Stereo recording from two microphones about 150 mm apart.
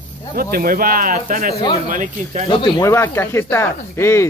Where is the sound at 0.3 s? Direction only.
80° right; by 2.4 s 60° right (ahead or behind).